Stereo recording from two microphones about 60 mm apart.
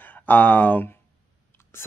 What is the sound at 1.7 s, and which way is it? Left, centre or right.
Speech, left.